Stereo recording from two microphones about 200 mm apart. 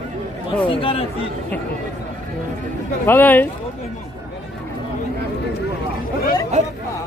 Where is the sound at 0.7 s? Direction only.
25° left (ahead or behind).